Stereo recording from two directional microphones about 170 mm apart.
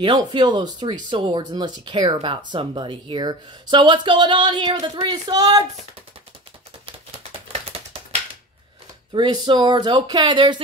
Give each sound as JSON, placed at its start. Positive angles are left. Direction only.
{"t": 0.0, "sound": "speech", "side_deg": -25}
{"t": 9.1, "sound": "speech", "side_deg": -25}